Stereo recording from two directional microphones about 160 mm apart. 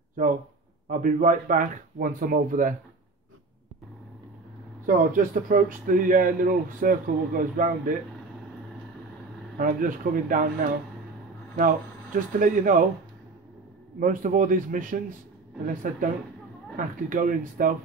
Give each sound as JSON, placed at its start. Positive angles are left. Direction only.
{"t": 0.8, "sound": "a man's voice", "side_deg": -55}
{"t": 4.8, "sound": "a man's voice", "side_deg": -60}
{"t": 9.6, "sound": "a man's voice", "side_deg": -60}
{"t": 13.9, "sound": "a man's voice", "side_deg": -55}